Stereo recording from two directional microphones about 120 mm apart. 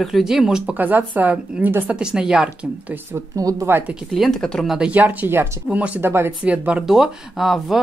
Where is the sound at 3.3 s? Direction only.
30° right (ahead or behind).